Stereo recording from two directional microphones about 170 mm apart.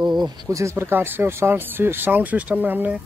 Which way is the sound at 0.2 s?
20° right (ahead or behind).